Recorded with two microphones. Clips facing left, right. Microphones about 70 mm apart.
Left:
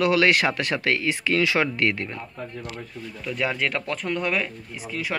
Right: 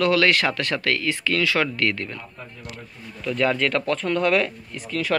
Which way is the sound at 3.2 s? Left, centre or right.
Centre.